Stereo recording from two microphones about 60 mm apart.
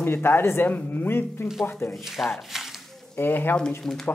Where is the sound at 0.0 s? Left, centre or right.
Left.